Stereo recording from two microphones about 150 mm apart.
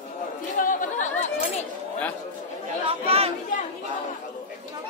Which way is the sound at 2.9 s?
40° right (ahead or behind).